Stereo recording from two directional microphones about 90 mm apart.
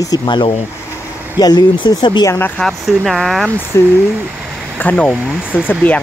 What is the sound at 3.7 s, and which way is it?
Speech, 30° left (ahead or behind).